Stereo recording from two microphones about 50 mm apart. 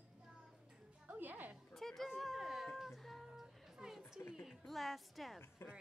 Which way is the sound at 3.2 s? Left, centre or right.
Centre.